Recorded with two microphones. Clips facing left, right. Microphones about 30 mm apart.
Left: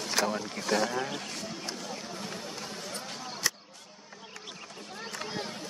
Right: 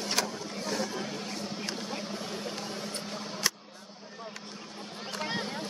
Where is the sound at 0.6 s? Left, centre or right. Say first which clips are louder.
Left 5 dB; left.